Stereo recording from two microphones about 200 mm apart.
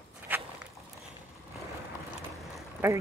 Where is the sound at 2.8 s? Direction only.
10° right (ahead or behind).